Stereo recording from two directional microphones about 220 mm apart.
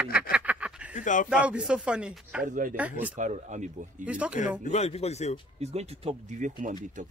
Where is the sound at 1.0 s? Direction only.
35° left (ahead or behind).